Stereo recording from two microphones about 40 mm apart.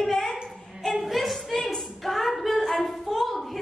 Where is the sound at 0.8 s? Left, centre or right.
Centre.